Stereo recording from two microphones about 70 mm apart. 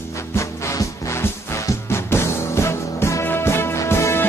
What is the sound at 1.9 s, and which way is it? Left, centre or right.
Music, left.